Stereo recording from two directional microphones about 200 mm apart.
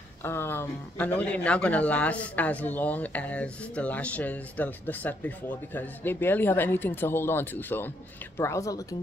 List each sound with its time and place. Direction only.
0.2 s speech: 10° left (ahead or behind)